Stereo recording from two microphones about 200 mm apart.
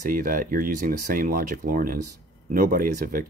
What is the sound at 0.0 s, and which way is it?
Speech, 45° right (ahead or behind).